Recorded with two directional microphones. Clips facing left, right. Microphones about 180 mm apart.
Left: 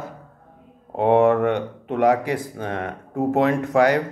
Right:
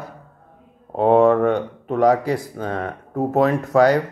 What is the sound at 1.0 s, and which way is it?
Speech, 15° left (ahead or behind).